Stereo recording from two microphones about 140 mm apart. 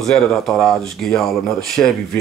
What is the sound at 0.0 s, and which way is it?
Speech, centre (ahead or behind).